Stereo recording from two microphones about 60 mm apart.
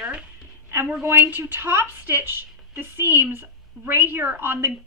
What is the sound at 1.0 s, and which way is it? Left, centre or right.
A woman's voice, right.